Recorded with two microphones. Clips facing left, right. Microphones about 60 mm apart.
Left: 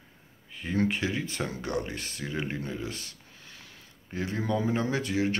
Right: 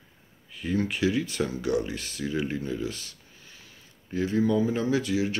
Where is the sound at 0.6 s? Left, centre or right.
Left.